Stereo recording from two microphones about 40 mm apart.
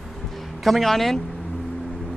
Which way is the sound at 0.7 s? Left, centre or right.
Centre.